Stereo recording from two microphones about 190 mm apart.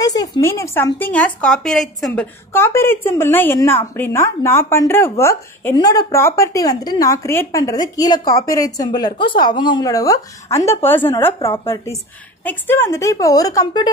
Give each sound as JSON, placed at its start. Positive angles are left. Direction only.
{"t": 0.0, "sound": "a woman's voice", "side_deg": 20}
{"t": 2.5, "sound": "a woman's voice", "side_deg": 10}